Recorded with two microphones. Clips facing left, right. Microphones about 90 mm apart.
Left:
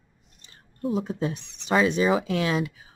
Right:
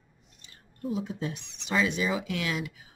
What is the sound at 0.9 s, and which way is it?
Speech, 45° left (ahead or behind).